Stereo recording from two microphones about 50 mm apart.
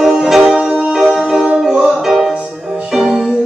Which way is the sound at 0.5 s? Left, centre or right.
Right.